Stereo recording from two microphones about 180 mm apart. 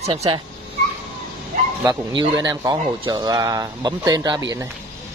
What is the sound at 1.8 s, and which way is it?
Speech, 20° right (ahead or behind).